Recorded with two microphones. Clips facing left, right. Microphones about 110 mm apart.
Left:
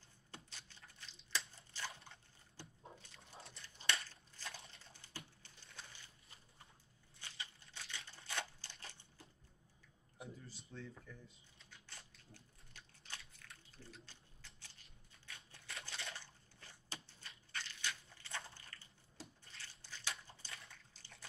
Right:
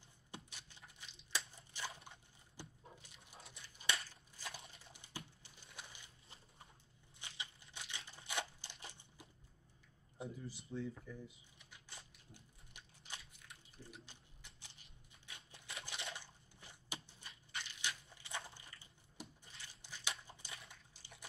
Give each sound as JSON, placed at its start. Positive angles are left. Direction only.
{"t": 0.3, "sound": "typewriter", "side_deg": -15}
{"t": 1.5, "sound": "crushing", "side_deg": -15}
{"t": 2.0, "sound": "a sound", "side_deg": -15}
{"t": 4.1, "sound": "crushing", "side_deg": -10}
{"t": 4.6, "sound": "typing", "side_deg": -15}
{"t": 7.2, "sound": "a sound", "side_deg": -20}
{"t": 10.2, "sound": "speech", "side_deg": -15}
{"t": 10.7, "sound": "typing", "side_deg": -10}
{"t": 13.3, "sound": "a sound", "side_deg": -15}
{"t": 17.5, "sound": "crushing", "side_deg": -15}
{"t": 20.9, "sound": "typing", "side_deg": -15}